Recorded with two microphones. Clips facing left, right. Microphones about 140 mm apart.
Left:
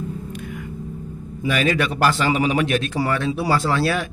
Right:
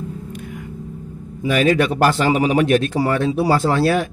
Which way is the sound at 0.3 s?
45° right (ahead or behind).